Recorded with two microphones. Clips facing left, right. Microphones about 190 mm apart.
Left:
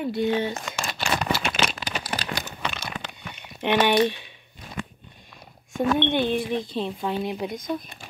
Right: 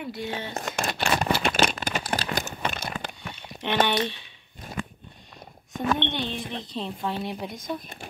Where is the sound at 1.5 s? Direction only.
50° right (ahead or behind).